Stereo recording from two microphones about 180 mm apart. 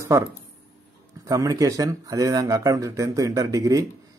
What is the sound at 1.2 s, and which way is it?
Speech, 20° right (ahead or behind).